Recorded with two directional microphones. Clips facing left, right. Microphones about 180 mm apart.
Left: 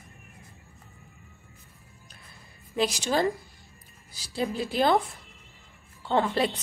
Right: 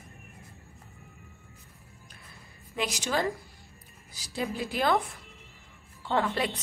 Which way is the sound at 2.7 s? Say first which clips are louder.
Left 4 dB; 30° left (ahead or behind).